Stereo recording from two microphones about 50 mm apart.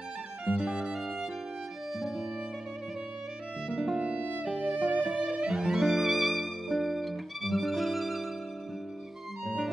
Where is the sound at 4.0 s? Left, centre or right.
Right.